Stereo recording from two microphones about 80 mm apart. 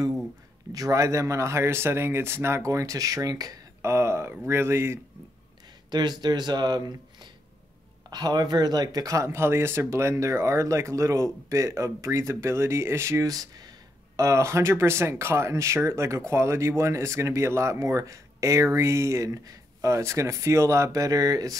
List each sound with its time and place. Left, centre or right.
0.7 s speech: right
3.8 s speech: right
5.9 s speech: right
8.1 s speech: right
13.2 s speech: right